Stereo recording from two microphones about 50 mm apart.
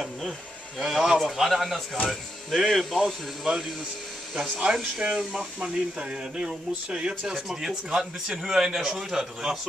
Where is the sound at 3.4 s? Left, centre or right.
Centre.